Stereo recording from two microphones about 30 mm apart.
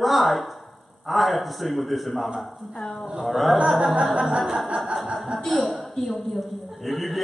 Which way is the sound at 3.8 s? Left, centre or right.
Right.